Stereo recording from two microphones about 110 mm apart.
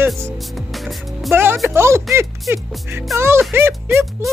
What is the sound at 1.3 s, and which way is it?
Speech, 20° right (ahead or behind).